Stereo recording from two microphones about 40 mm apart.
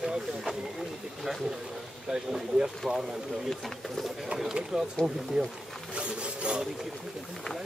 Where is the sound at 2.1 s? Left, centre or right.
Centre.